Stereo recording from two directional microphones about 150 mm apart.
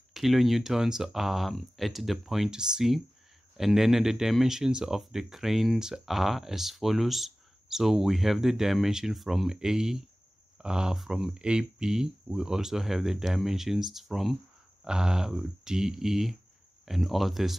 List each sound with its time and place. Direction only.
0.1 s speech: centre (ahead or behind)